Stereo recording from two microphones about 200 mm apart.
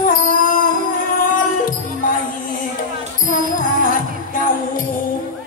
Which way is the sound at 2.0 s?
40° left (ahead or behind).